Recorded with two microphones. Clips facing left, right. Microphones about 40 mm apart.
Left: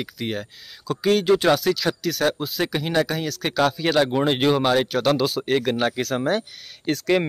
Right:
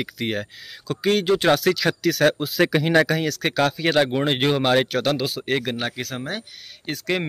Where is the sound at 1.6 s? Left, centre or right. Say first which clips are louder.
Right 2 dB; right.